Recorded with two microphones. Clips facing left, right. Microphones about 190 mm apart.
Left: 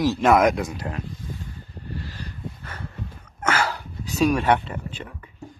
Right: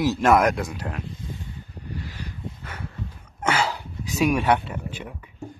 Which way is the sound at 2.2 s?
10° right (ahead or behind).